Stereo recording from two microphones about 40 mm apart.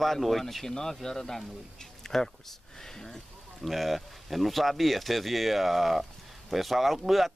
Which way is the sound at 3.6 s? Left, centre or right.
Centre.